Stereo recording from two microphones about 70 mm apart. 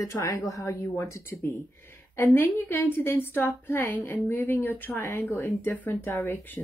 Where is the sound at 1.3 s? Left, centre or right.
Centre.